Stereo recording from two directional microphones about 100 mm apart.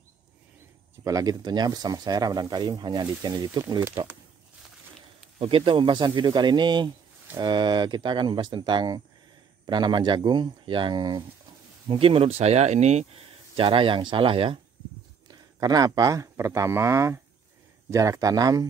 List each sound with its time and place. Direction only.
1.0 s speech: 35° right (ahead or behind)
5.4 s speech: 65° right (ahead or behind)
11.9 s speech: 65° right (ahead or behind); by 13.7 s 85° right
13.7 s speech: 55° right (ahead or behind)
15.2 s speech: 40° right (ahead or behind)